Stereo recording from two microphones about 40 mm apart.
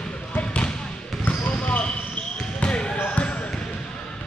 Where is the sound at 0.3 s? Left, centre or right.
Left.